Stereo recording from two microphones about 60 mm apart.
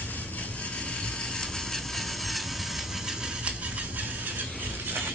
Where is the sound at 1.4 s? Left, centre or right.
Centre.